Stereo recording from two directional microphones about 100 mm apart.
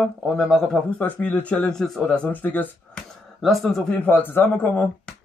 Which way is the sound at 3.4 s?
Centre (ahead or behind).